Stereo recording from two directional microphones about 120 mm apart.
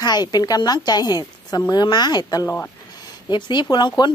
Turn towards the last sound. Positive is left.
turn(degrees=40)  # may be behind; listen again after turning